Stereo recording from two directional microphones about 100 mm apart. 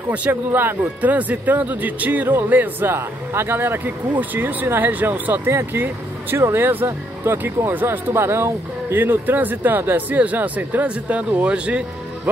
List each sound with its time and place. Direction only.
0.1 s speech: 15° right (ahead or behind)